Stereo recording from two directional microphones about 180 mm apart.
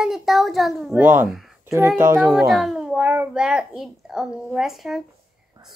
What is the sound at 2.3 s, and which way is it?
Speech, centre (ahead or behind).